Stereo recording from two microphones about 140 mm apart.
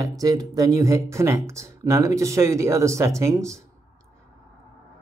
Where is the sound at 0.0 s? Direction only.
25° right (ahead or behind).